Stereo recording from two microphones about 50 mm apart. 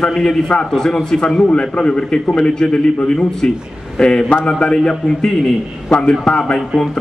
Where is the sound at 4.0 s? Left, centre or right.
Centre.